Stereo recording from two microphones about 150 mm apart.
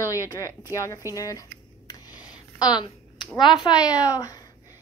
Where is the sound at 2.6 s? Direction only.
30° left (ahead or behind).